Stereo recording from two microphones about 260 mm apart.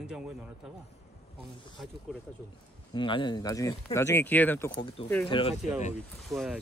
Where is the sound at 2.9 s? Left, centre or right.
Centre.